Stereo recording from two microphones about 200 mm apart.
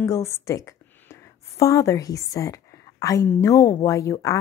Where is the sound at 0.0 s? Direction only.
15° left (ahead or behind).